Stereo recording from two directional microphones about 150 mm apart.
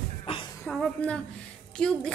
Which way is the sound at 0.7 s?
5° left (ahead or behind).